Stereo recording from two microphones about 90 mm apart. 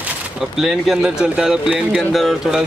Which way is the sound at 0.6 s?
5° right (ahead or behind).